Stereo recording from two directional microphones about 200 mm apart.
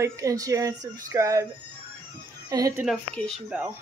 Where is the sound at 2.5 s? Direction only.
15° right (ahead or behind).